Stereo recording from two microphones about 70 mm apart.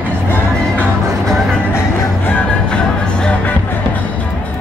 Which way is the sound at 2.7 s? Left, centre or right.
Centre.